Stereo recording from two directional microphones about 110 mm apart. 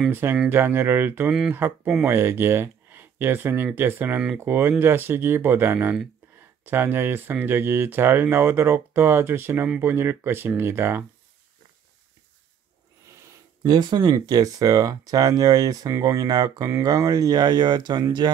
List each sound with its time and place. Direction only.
0.1 s speech: 20° right (ahead or behind)
13.7 s speech: 40° right (ahead or behind)